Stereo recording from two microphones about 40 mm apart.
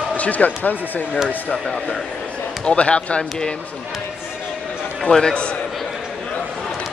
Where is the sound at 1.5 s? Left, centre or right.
Centre.